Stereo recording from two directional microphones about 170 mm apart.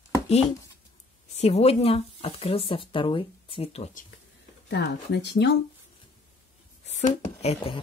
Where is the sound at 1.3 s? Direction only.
40° left (ahead or behind).